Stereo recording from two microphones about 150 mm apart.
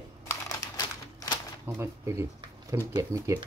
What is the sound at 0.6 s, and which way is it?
Crumpling, 20° left (ahead or behind).